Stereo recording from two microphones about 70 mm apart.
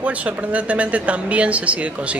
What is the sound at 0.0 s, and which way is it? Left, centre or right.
Speech, centre.